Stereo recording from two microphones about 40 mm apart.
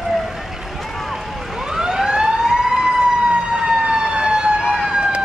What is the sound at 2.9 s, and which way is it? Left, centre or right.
Emergency vehicle, centre.